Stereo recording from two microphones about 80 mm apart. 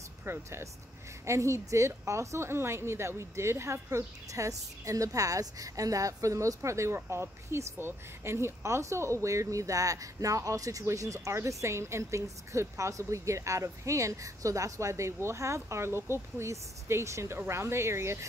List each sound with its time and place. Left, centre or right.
0.2 s a woman's voice: right